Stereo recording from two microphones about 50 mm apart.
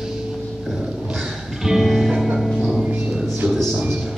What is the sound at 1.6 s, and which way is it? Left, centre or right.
Music, centre.